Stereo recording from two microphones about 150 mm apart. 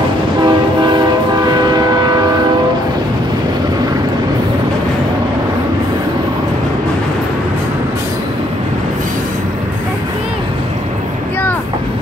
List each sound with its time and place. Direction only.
0.4 s train: 30° right (ahead or behind)